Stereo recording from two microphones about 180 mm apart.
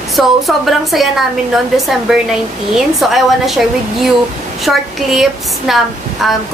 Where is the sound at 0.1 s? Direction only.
Centre (ahead or behind).